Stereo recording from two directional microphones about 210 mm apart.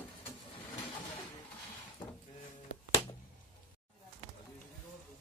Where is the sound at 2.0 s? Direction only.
25° left (ahead or behind).